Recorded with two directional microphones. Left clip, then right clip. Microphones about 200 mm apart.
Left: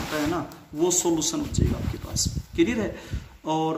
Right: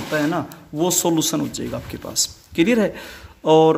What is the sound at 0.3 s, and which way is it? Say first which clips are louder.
Speech: right 5 dB; 45° right (ahead or behind).